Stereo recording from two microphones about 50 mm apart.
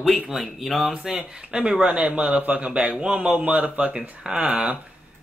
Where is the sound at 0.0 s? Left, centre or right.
Centre.